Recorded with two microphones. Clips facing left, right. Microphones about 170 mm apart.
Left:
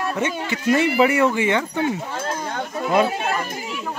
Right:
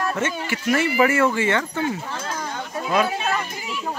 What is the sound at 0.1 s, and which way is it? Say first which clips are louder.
A man's voice: left 1 dB; 15° left (ahead or behind).